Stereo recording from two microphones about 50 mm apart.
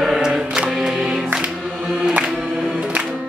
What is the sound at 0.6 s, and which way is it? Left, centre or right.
Music, centre.